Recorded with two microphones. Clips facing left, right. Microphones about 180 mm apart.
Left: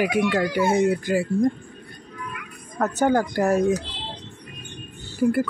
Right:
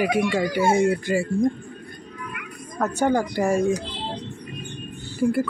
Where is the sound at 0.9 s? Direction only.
Centre (ahead or behind).